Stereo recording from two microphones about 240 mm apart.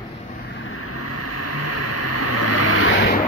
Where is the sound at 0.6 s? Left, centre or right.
Left.